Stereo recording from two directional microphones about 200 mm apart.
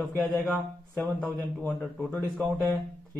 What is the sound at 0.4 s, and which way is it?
Speech, 5° left (ahead or behind).